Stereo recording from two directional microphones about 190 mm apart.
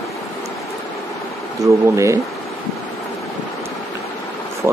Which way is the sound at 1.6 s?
15° right (ahead or behind).